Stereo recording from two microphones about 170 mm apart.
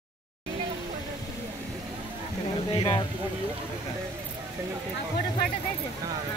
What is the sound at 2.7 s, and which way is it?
Speech, 30° left (ahead or behind).